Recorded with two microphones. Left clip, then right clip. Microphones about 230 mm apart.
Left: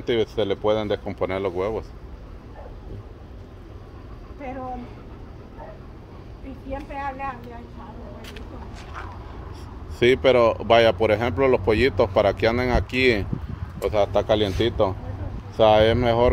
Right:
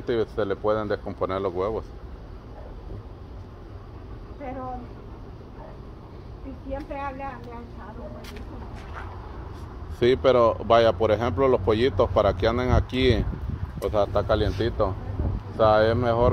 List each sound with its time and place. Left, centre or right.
0.0 s speech: centre
4.4 s a sound: left
6.7 s speech: left
8.2 s speech: centre
9.9 s speech: centre
15.5 s speech: left